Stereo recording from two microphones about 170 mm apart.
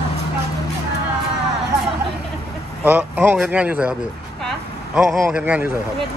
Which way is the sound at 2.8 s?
10° right (ahead or behind).